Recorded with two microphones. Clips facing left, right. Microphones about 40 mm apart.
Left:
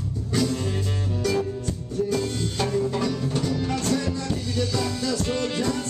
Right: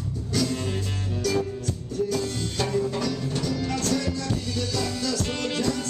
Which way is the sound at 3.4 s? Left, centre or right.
Centre.